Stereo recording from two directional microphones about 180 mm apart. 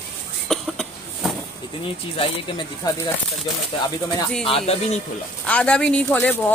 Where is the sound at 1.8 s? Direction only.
30° left (ahead or behind).